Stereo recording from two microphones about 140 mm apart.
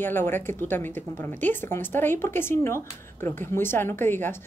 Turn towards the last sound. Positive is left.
turn(degrees=15)  # may be behind; listen again after turning